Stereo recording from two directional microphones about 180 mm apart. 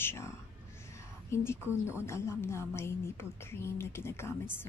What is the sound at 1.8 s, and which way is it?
A woman's voice, 15° left (ahead or behind).